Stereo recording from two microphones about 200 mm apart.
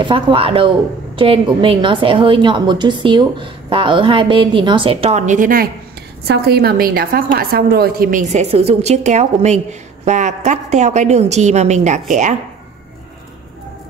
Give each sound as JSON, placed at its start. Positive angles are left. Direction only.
{"t": 0.0, "sound": "a woman's voice", "side_deg": -25}